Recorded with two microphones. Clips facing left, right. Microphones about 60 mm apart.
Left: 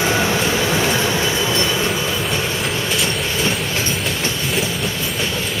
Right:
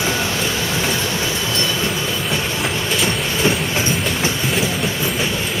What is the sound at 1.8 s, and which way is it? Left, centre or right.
Train, centre.